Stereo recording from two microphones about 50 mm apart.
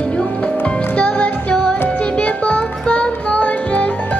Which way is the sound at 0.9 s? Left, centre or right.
Left.